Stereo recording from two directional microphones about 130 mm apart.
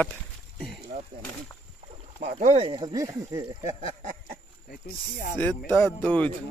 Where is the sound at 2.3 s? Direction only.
50° right (ahead or behind); by 3.6 s 25° right (ahead or behind).